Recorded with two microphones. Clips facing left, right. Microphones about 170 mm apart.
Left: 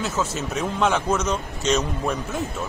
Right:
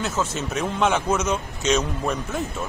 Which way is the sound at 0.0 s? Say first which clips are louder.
Even; centre (ahead or behind).